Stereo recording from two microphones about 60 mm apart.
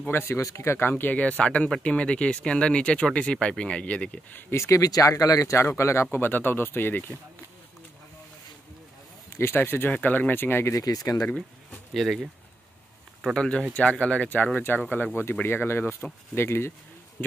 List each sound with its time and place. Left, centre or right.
0.3 s speech: left
0.6 s speech: left
4.3 s speech: left
4.6 s speech: left
5.5 s speech: left
6.1 s speech: left
9.3 s speech: left
10.8 s speech: left
11.3 s a sound: centre
13.3 s speech: centre
15.4 s speech: left